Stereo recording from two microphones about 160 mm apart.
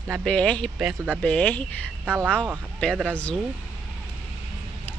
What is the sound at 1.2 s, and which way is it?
Speech, 10° left (ahead or behind).